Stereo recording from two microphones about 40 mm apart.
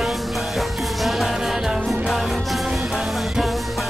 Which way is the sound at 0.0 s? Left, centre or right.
Centre.